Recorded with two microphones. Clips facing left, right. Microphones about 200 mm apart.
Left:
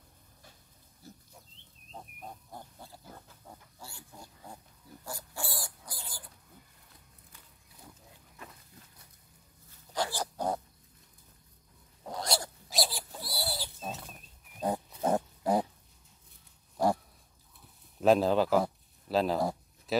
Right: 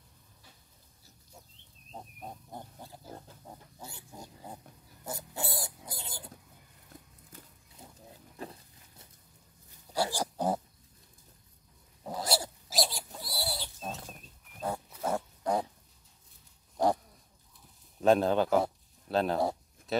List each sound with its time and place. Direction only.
1.0 s pig: 55° left (ahead or behind)
2.0 s pig: 20° right (ahead or behind)
3.5 s chicken: 20° right (ahead or behind)
3.8 s pig: 20° right (ahead or behind)
5.0 s dog: 20° right (ahead or behind)
8.4 s a sound: 30° right (ahead or behind)
9.9 s pig: 10° right (ahead or behind)
12.0 s dog: 5° right (ahead or behind)
14.6 s pig: 20° left (ahead or behind)
18.0 s a sound: centre (ahead or behind)